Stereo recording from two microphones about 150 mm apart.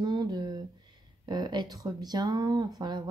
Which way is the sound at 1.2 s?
30° right (ahead or behind).